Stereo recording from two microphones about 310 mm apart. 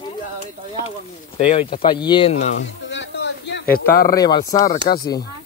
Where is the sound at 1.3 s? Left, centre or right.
Centre.